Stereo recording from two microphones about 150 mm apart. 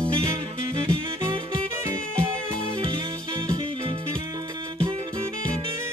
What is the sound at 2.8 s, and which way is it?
Music, 35° right (ahead or behind).